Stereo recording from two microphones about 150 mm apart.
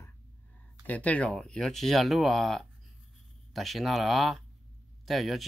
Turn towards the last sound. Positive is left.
turn(degrees=0)  # may be behind; listen again after turning